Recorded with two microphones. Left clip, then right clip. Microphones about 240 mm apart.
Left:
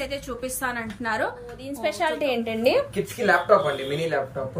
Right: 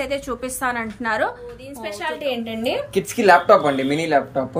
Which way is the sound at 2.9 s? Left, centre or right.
Right.